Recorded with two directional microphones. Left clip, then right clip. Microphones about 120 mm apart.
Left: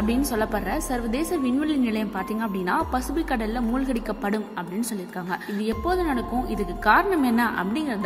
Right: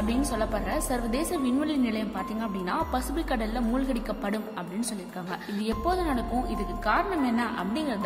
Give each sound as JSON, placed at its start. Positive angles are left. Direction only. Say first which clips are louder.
{"t": 0.0, "sound": "a woman's voice", "louder": "left 4 dB", "side_deg": 35}
{"t": 3.2, "sound": "a woman's voice", "louder": "left 3 dB", "side_deg": 30}
{"t": 6.9, "sound": "speech", "louder": "left 7 dB", "side_deg": 50}